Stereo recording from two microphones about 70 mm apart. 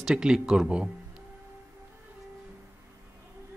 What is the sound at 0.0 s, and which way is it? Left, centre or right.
Speech, centre.